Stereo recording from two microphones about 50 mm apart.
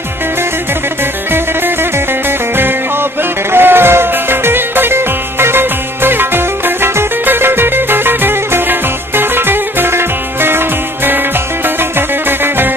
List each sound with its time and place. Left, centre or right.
2.5 s music: right
12.3 s music: right